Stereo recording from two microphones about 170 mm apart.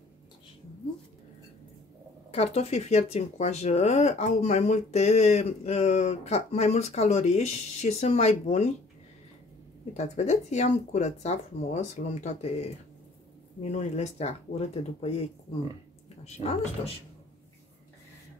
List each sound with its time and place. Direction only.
2.3 s speech: 40° left (ahead or behind)
9.9 s speech: 45° left (ahead or behind)
16.3 s speech: 40° left (ahead or behind)